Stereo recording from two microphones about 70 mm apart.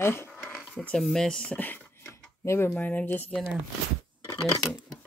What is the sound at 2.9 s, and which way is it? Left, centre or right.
Speech, left.